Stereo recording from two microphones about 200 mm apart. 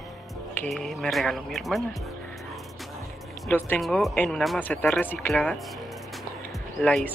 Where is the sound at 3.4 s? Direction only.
5° left (ahead or behind).